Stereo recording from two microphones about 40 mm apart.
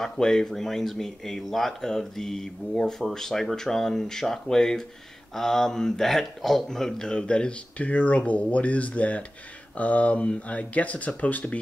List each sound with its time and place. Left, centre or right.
0.0 s speech: centre
7.7 s speech: left